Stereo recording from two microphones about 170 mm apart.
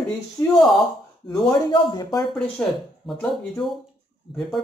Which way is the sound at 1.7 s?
25° left (ahead or behind).